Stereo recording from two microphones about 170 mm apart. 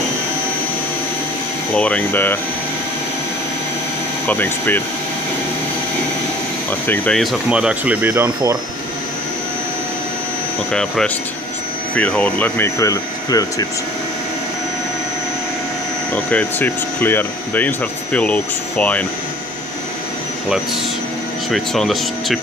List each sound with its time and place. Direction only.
1.8 s speech: 5° left (ahead or behind)
4.3 s speech: 10° left (ahead or behind)
6.7 s speech: 10° left (ahead or behind); by 8.3 s 10° right (ahead or behind)
10.7 s speech: 5° left (ahead or behind); by 13.7 s 20° left (ahead or behind)
16.3 s speech: 10° left (ahead or behind)
21.5 s speech: centre (ahead or behind)